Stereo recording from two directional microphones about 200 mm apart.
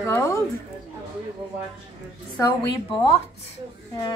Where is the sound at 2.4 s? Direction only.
20° left (ahead or behind).